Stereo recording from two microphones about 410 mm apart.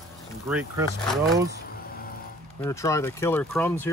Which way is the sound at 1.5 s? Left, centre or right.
Left.